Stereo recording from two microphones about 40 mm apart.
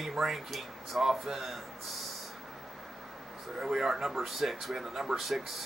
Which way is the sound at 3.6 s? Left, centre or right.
Centre.